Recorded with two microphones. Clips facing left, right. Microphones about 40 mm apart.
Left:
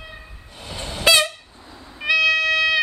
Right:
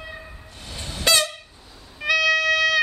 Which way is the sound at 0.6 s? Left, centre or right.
Centre.